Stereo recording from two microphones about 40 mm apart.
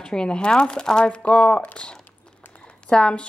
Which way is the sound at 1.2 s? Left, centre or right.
Left.